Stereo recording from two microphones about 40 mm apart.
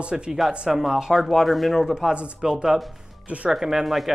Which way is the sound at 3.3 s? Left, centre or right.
Right.